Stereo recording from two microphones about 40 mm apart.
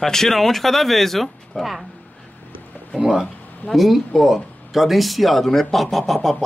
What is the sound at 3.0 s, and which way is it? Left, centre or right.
Speech, centre.